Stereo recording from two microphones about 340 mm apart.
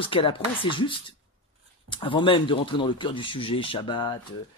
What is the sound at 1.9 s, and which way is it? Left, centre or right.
Speech, centre.